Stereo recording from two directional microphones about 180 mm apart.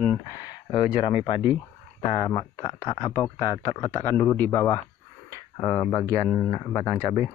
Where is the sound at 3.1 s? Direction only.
15° left (ahead or behind).